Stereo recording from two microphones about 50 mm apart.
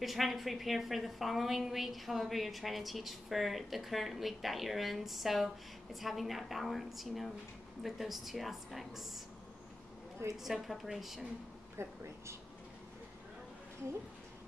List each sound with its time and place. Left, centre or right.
0.0 s a woman's voice: centre
10.3 s a woman's voice: centre
11.8 s speech: right